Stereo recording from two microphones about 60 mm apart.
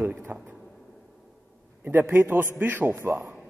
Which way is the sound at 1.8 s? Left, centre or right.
Right.